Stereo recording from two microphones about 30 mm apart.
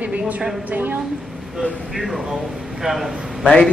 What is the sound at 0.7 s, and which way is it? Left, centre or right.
Speech, right.